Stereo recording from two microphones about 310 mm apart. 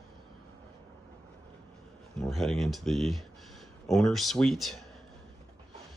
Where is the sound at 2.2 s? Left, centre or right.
Centre.